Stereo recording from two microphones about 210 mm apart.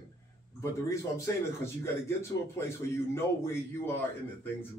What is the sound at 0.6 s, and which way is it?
A man's voice, 15° left (ahead or behind).